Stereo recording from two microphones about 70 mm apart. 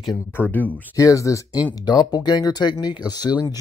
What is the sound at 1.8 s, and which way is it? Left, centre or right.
Speech, left.